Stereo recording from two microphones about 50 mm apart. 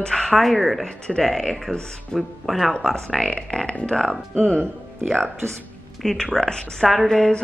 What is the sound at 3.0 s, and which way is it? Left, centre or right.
A woman's voice, centre.